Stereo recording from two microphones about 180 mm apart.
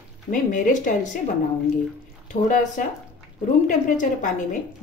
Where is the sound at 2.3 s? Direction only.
45° left (ahead or behind).